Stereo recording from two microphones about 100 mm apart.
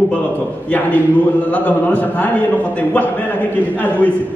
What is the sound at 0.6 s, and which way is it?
A man's voice, 15° left (ahead or behind).